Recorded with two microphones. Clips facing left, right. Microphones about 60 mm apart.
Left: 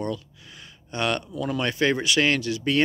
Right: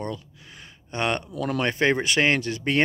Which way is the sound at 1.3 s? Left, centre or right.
Right.